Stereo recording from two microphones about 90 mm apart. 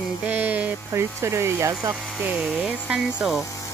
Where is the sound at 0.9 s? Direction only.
30° right (ahead or behind).